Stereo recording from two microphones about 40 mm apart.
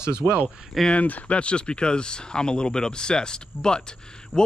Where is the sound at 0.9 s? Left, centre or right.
Left.